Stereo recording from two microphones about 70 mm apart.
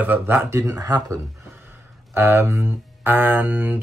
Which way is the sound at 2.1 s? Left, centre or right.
Right.